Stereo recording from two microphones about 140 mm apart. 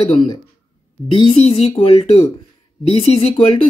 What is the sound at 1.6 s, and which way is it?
Speech, 40° left (ahead or behind).